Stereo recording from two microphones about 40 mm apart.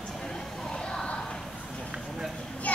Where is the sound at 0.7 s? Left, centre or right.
Left.